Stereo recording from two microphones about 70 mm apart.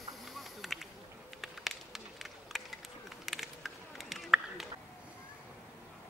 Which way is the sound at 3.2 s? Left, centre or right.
Centre.